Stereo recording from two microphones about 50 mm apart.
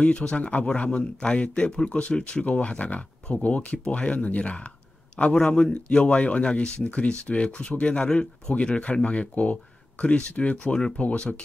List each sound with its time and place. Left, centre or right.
0.0 s speech: left